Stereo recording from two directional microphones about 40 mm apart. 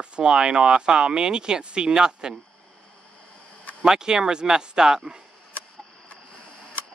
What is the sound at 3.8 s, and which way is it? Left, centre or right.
Speech, centre.